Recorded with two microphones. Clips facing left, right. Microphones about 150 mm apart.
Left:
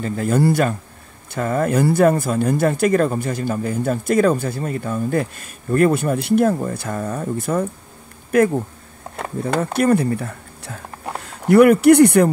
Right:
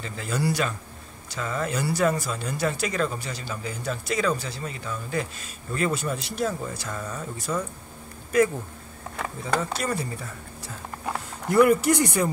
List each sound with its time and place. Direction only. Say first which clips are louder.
0.0 s speech: left 10 dB; 50° left (ahead or behind)
9.6 s speech: left 11 dB; 60° left (ahead or behind)